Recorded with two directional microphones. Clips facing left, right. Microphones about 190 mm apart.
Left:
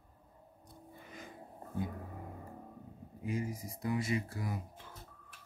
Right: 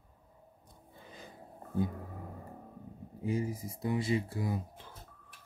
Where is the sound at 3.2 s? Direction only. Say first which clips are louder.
Right 4 dB; 30° right (ahead or behind).